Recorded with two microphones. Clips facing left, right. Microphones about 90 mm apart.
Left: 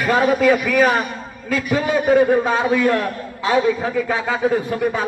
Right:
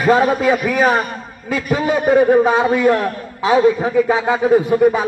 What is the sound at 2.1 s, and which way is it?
A man's voice, 20° right (ahead or behind).